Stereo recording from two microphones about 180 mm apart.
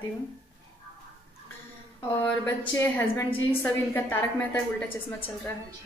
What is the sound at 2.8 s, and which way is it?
A woman's voice, 15° left (ahead or behind).